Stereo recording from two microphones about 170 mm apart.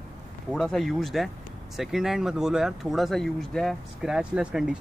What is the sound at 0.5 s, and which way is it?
Speech, 5° left (ahead or behind).